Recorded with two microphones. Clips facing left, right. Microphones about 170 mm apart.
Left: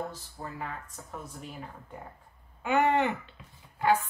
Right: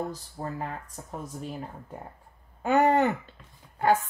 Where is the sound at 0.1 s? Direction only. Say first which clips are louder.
Right 6 dB; 40° right (ahead or behind).